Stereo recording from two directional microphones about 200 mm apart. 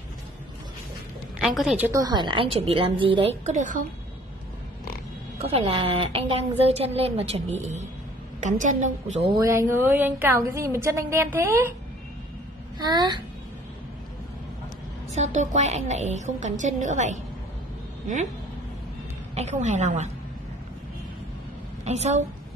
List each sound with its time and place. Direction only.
1.4 s a woman's voice: centre (ahead or behind)
1.9 s a woman's voice: 20° right (ahead or behind); by 3.8 s 35° right (ahead or behind)
5.4 s speech: 30° right (ahead or behind)
9.4 s a woman's voice: 15° right (ahead or behind)
12.7 s a woman's voice: 20° right (ahead or behind)
15.1 s speech: 35° right (ahead or behind)
19.3 s speech: 35° right (ahead or behind)
21.8 s speech: 35° right (ahead or behind)